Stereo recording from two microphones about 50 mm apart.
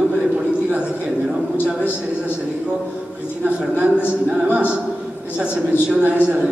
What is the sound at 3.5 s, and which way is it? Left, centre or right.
Speech, right.